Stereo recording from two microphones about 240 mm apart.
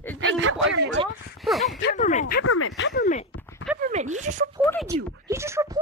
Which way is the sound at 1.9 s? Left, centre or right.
Left.